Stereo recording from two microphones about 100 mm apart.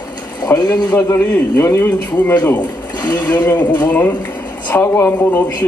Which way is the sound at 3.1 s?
15° left (ahead or behind).